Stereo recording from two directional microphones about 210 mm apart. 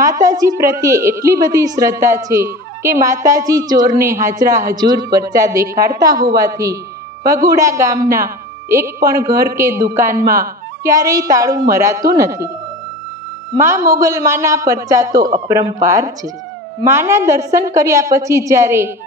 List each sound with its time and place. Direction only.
0.0 s a woman's voice: 15° right (ahead or behind)
10.2 s speech: 45° right (ahead or behind)
10.8 s a woman's voice: 15° right (ahead or behind)
13.6 s a woman's voice: 10° right (ahead or behind)